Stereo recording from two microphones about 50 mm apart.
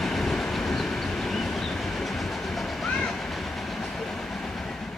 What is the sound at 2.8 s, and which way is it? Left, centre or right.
Train, centre.